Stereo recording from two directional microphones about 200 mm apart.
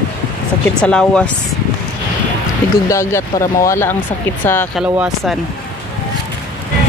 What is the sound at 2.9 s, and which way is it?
Speech, 15° left (ahead or behind).